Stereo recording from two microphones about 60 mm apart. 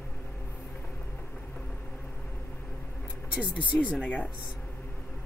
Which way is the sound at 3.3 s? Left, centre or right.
Centre.